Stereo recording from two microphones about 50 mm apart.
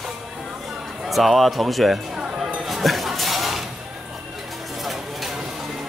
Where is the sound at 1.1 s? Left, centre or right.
Centre.